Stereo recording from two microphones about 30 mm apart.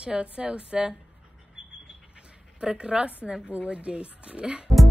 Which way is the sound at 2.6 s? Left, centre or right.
Right.